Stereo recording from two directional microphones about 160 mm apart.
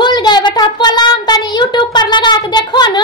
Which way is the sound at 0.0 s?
25° left (ahead or behind).